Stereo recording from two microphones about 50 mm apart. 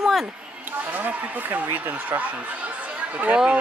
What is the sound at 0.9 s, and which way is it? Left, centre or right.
Speech, right.